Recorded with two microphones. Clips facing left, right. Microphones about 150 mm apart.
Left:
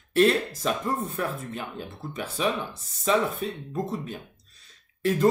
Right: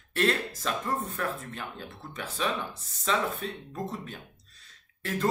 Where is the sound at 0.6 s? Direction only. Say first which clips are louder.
Left 2 dB; 15° left (ahead or behind).